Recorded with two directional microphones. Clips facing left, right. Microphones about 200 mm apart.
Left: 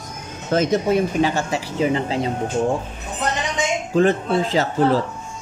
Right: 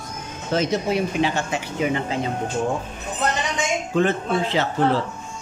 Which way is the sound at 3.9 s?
40° left (ahead or behind).